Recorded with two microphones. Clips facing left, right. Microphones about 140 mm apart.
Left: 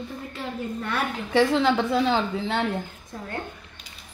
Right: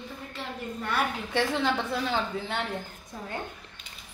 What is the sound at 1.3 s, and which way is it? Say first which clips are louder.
A woman's voice: left 9 dB; 90° left.